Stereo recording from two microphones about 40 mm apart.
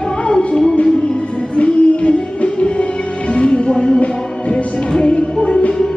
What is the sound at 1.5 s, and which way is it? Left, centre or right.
Music, left.